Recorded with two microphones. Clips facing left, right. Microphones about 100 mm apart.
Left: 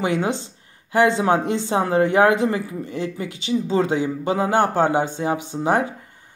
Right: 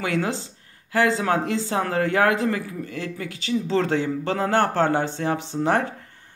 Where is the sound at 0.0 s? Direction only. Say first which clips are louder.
Left 3 dB; 20° left (ahead or behind).